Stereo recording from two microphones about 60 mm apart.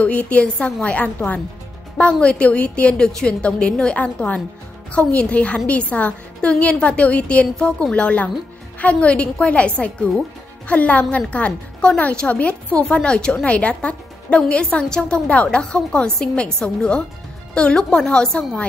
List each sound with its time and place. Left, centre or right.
0.0 s a woman's voice: left